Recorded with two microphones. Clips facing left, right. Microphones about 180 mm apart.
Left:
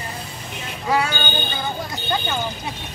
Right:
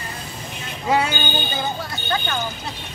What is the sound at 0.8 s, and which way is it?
Music, 20° right (ahead or behind).